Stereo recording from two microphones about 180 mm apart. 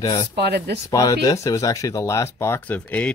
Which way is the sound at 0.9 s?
20° left (ahead or behind).